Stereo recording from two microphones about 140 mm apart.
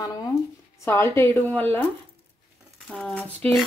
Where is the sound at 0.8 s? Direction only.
15° left (ahead or behind).